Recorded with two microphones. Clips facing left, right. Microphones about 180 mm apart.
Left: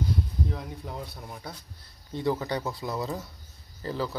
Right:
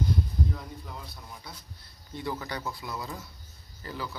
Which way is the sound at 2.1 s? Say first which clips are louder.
Left 7 dB; 30° left (ahead or behind).